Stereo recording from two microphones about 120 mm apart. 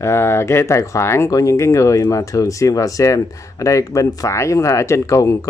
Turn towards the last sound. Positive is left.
turn(degrees=25)  # may be behind; listen again after turning